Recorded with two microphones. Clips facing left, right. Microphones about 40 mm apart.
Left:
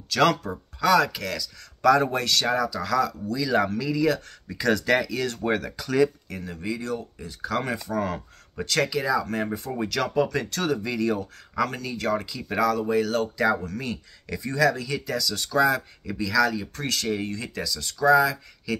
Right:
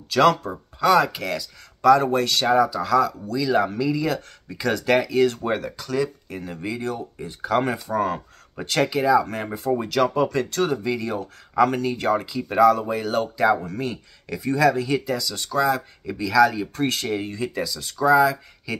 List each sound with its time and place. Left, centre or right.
0.1 s speech: centre
1.8 s speech: centre
2.5 s speech: centre
2.8 s speech: centre
6.5 s speech: centre
6.8 s speech: right; by 11.1 s centre
11.6 s speech: right
12.4 s speech: centre
12.7 s speech: centre
13.6 s speech: right
13.8 s speech: centre
15.0 s speech: centre
16.1 s speech: centre